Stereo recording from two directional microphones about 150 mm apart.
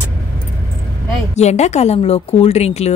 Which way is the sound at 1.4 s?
50° left (ahead or behind).